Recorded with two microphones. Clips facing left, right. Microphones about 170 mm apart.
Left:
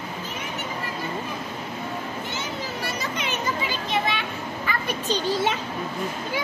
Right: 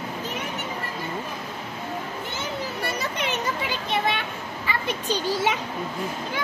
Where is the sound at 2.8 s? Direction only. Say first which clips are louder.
Right 2 dB; 60° right (ahead or behind).